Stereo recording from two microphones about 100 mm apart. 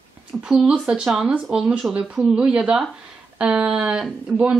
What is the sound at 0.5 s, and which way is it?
Speech, 10° right (ahead or behind).